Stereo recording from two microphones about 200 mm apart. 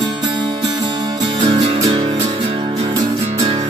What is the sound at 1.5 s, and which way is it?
Music, 15° right (ahead or behind).